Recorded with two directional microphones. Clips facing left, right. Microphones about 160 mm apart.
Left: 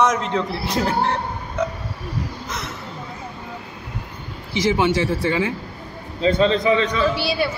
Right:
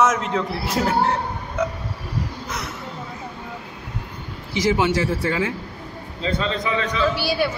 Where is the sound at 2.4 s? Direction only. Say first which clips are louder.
Even; 10° right (ahead or behind).